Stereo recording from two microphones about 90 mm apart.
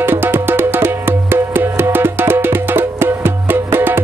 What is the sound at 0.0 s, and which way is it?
Music, 25° right (ahead or behind).